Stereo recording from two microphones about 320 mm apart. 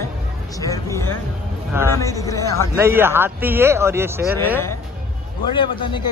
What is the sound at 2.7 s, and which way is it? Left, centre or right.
Speech, centre.